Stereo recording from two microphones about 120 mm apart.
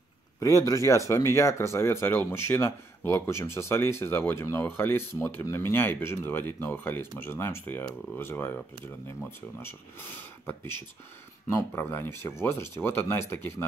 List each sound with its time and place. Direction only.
0.4 s speech: 25° left (ahead or behind)